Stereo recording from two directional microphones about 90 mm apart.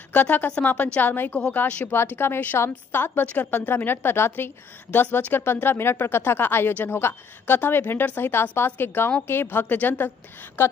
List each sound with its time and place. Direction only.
0.1 s speech: 20° left (ahead or behind)